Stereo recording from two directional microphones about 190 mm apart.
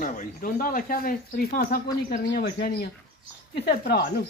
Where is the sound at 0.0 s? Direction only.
45° left (ahead or behind).